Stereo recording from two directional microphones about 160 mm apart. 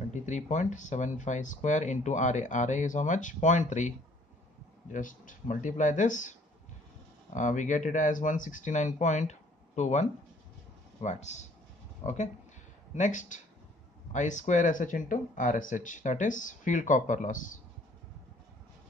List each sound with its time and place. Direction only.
0.1 s speech: 50° left (ahead or behind)
4.9 s speech: 55° left (ahead or behind)
7.3 s speech: 50° left (ahead or behind)